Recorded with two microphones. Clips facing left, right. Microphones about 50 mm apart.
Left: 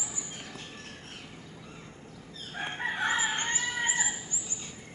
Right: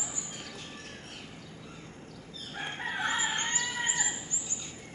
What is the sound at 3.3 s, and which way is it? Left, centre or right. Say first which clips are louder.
Chicken: left 1 dB; left.